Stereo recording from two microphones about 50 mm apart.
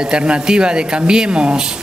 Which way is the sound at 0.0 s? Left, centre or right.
Centre.